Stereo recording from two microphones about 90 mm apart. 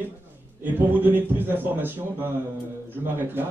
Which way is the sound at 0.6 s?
20° right (ahead or behind).